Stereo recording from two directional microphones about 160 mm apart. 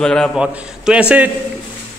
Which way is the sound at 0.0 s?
5° left (ahead or behind).